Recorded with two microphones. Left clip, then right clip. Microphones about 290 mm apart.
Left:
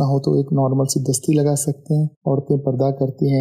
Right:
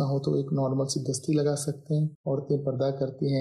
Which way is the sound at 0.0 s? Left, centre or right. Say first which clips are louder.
Left 9 dB; left.